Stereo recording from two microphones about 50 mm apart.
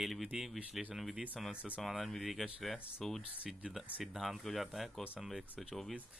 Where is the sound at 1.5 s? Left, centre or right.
Right.